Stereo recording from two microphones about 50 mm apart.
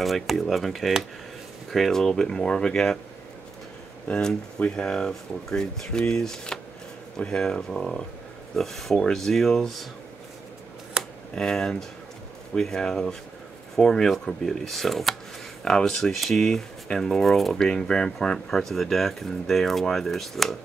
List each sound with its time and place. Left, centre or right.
0.0 s speech: centre
4.1 s speech: centre
11.3 s speech: centre
17.6 s speech: centre